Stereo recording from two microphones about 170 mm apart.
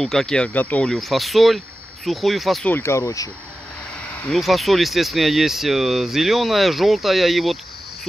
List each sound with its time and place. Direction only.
0.0 s speech: centre (ahead or behind)
2.7 s speech: 15° left (ahead or behind)
4.2 s speech: centre (ahead or behind)